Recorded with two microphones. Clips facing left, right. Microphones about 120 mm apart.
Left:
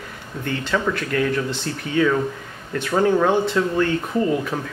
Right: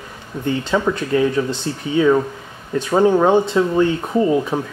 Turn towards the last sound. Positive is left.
turn(degrees=-20)  # may be behind; listen again after turning